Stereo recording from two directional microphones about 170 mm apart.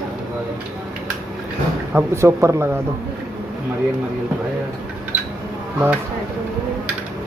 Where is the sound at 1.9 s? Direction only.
15° right (ahead or behind).